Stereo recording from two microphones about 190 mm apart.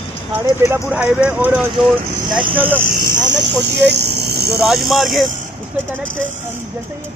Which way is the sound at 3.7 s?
60° right (ahead or behind).